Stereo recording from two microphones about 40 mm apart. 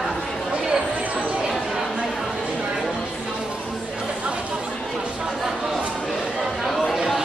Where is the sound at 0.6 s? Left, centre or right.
Centre.